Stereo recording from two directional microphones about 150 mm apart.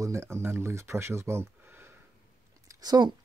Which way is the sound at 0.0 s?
20° right (ahead or behind).